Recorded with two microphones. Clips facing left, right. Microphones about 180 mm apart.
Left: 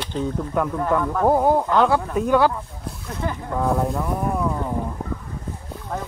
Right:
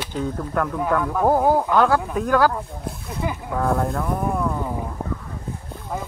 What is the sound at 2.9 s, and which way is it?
Boat, 5° right (ahead or behind).